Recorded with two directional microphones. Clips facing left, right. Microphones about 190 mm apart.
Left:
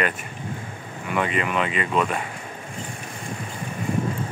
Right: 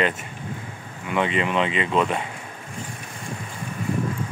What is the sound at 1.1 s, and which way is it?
Speech, 25° right (ahead or behind).